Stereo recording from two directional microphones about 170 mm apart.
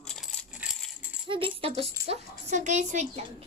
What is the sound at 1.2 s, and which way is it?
A woman's voice, 30° right (ahead or behind).